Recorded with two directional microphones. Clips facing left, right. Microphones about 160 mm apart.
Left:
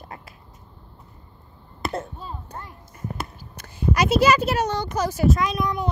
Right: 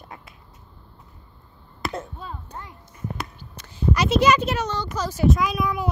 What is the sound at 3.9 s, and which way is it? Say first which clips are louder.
Speech: even; 10° left (ahead or behind).